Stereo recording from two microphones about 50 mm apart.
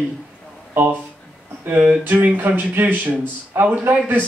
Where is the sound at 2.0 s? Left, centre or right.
Right.